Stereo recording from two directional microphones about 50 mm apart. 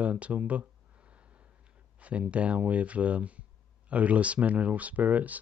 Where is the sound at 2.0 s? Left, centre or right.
Right.